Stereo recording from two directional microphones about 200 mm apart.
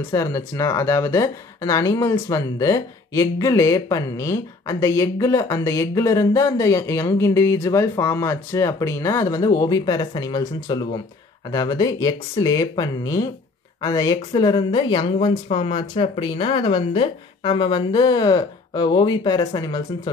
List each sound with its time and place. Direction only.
0.1 s speech: 15° left (ahead or behind)